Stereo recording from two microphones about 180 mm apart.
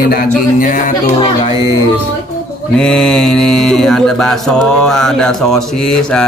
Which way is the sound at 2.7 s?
5° left (ahead or behind).